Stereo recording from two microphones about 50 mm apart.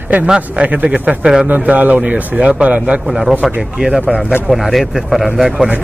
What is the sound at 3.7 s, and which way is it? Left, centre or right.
Speech, centre.